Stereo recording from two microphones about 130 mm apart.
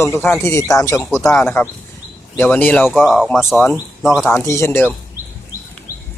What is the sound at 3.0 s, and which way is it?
Speech, 5° right (ahead or behind).